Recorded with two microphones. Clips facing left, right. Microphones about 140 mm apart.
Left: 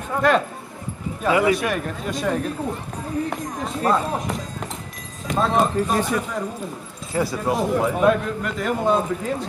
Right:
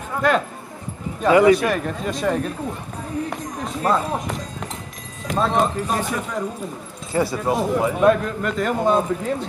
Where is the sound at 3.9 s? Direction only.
Centre (ahead or behind).